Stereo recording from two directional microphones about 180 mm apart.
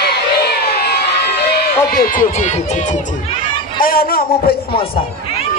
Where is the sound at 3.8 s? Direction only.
55° left (ahead or behind).